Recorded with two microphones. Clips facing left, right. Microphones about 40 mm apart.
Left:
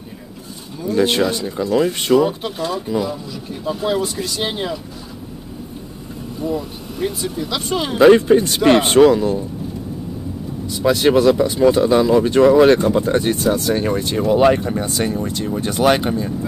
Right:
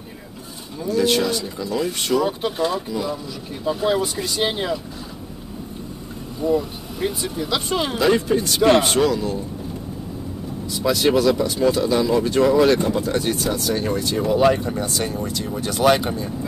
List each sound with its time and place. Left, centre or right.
0.8 s speech: left
2.2 s speech: centre
6.4 s speech: centre
8.0 s speech: left
10.8 s speech: left